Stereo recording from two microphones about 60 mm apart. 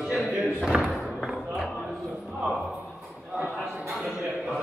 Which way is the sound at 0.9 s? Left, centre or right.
Centre.